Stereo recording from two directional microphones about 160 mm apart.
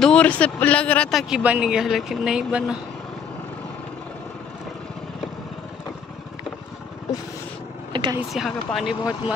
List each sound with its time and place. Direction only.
0.0 s speech: 5° left (ahead or behind)
7.9 s a sound: 30° right (ahead or behind)
8.3 s speech: centre (ahead or behind)